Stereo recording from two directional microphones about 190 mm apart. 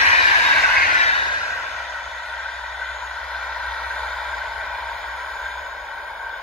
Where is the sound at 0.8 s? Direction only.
40° left (ahead or behind).